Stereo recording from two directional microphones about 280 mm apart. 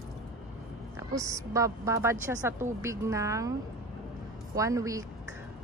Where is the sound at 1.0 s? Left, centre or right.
Centre.